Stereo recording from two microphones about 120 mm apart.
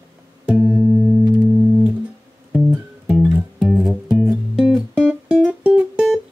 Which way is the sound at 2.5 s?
10° right (ahead or behind).